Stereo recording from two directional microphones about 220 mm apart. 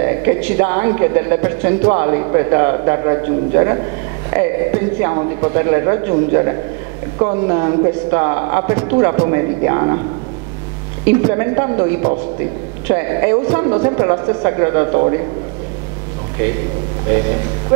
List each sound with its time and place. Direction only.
0.0 s a woman's voice: 15° right (ahead or behind)
11.2 s a woman's voice: 15° right (ahead or behind)